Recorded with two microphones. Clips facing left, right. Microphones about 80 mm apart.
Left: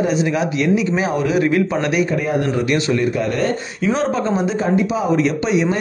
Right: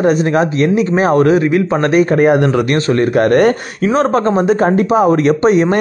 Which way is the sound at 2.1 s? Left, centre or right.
Right.